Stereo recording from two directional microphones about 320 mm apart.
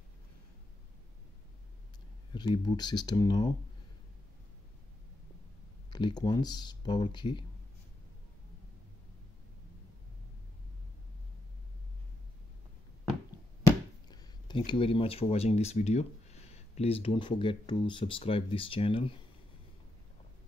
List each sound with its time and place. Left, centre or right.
2.3 s speech: centre
5.9 s speech: centre
14.0 s speech: centre